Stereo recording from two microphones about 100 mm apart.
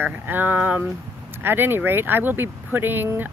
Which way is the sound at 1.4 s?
20° right (ahead or behind).